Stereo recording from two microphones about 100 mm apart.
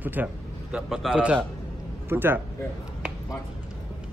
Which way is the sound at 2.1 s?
20° right (ahead or behind).